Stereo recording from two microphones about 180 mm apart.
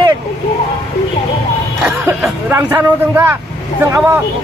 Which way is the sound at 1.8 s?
15° right (ahead or behind).